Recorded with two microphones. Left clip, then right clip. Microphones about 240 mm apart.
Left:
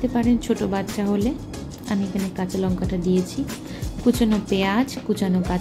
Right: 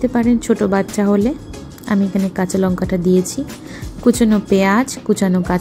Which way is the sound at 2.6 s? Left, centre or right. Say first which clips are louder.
Right 6 dB; right.